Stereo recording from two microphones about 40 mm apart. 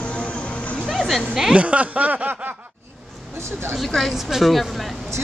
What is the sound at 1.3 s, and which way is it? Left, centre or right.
Speech, centre.